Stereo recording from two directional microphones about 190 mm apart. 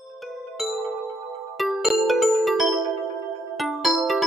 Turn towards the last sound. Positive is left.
turn(degrees=0)  # may be behind; listen again after turning